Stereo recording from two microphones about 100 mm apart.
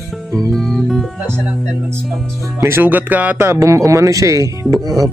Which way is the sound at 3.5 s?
30° right (ahead or behind).